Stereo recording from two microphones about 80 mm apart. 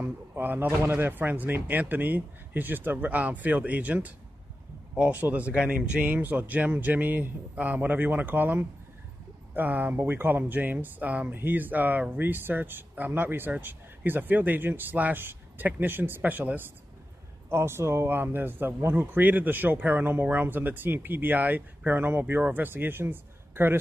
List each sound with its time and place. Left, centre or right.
0.0 s speech: right